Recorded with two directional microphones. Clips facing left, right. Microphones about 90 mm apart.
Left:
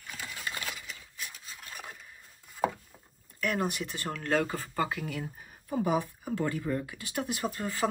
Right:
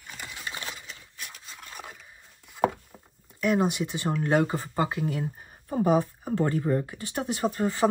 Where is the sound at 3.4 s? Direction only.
20° right (ahead or behind).